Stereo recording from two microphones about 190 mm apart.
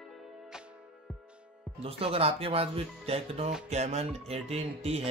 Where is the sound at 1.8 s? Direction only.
30° right (ahead or behind).